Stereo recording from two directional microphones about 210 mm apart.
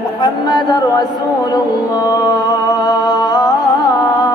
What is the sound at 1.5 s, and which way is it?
Music, 15° left (ahead or behind).